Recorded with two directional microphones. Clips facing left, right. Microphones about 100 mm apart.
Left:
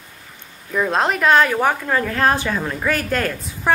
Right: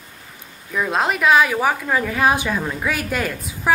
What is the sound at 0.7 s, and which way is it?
A woman's voice, centre (ahead or behind).